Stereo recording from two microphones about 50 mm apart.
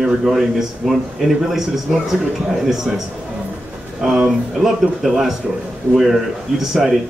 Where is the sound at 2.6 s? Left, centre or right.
Centre.